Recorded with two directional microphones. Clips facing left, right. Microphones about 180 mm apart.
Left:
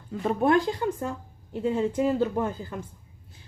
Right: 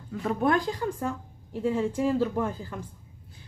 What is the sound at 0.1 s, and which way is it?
A woman's voice, 25° left (ahead or behind).